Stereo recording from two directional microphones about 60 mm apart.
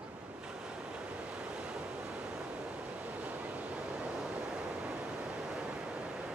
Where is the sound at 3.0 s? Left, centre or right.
Right.